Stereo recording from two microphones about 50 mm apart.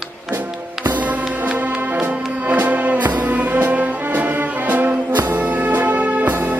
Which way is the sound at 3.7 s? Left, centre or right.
Right.